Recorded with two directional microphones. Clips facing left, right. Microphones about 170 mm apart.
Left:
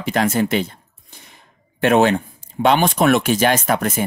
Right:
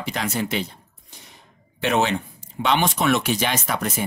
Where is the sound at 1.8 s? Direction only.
50° left (ahead or behind).